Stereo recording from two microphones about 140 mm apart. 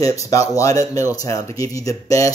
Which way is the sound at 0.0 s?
25° left (ahead or behind).